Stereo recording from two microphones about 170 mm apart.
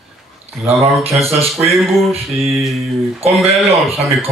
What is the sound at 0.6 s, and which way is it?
Speech, 35° right (ahead or behind).